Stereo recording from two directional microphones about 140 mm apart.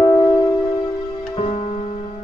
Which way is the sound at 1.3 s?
45° left (ahead or behind).